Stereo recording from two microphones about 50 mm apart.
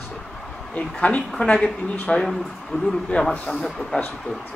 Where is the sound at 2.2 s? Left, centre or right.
Centre.